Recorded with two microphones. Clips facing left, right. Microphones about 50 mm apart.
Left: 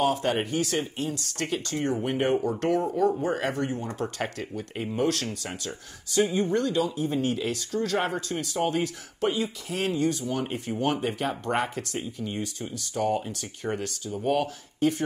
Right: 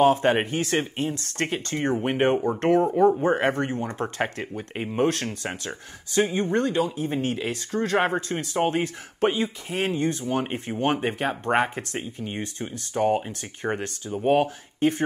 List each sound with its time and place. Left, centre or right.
0.0 s speech: right